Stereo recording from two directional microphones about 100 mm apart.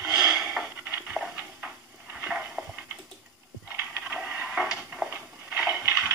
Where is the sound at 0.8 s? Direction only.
20° right (ahead or behind).